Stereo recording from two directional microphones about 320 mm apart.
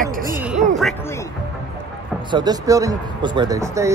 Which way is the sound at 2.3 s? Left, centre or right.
Centre.